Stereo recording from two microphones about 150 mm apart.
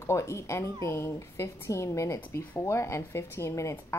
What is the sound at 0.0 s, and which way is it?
Speech, 20° left (ahead or behind).